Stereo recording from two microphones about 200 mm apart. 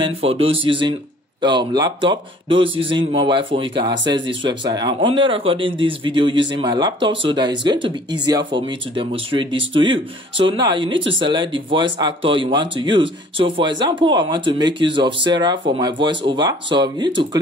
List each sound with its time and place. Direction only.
0.0 s speech: 30° right (ahead or behind)